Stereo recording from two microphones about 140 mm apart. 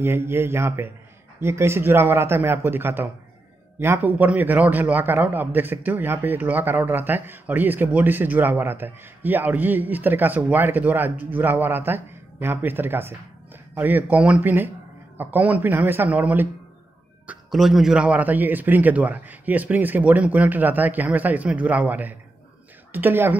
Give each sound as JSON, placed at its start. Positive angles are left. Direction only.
{"t": 0.0, "sound": "a man's voice", "side_deg": -15}